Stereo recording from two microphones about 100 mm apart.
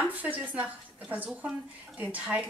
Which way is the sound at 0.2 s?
15° right (ahead or behind).